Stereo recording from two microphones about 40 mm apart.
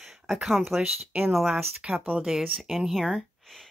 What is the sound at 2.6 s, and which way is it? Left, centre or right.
Speech, centre.